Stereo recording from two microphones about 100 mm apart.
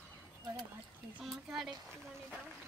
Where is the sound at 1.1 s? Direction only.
Centre (ahead or behind).